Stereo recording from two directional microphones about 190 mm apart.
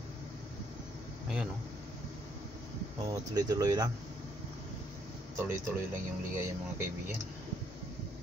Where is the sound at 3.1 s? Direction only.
20° right (ahead or behind).